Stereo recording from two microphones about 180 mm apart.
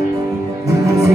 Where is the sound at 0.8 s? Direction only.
20° right (ahead or behind).